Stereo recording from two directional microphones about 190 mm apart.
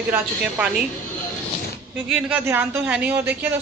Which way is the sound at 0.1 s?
5° right (ahead or behind).